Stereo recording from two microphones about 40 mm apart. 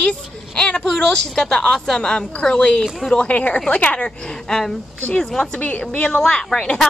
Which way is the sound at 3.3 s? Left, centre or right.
Left.